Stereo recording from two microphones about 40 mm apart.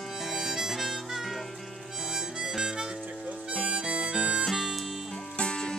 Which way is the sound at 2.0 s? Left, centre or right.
Centre.